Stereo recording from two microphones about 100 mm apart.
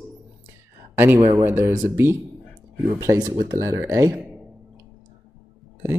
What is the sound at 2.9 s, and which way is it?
Speech, 35° right (ahead or behind).